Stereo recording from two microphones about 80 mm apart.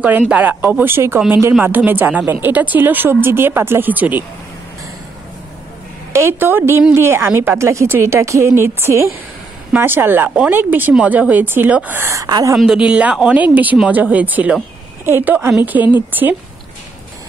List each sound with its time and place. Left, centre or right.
0.0 s speech: right
6.1 s a woman's voice: right
12.6 s speech: centre